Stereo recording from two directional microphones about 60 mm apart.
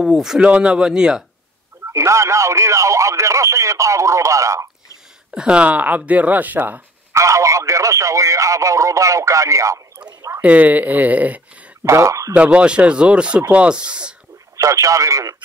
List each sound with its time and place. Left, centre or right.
0.0 s speech: centre
1.9 s speech: right
5.3 s speech: centre
7.1 s speech: right
10.4 s speech: right
11.8 s speech: right
12.4 s speech: centre
14.6 s speech: right